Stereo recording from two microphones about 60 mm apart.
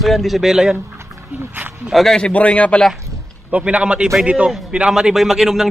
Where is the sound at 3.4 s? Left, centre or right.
Right.